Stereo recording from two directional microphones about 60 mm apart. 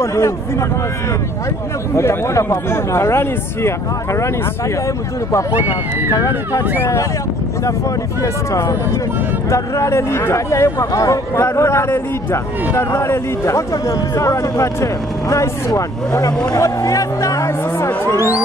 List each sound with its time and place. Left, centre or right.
0.0 s speech: left
2.0 s speech: left
6.8 s speech: left
8.2 s speech: left
16.5 s speech: left